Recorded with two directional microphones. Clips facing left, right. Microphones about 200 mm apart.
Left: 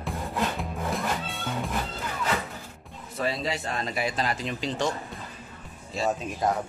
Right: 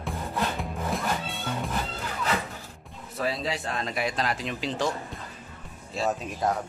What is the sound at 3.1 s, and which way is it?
Speech, centre (ahead or behind).